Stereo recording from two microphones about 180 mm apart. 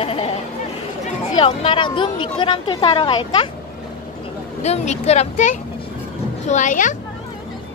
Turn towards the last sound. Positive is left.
turn(degrees=45)  # may be behind; listen again after turning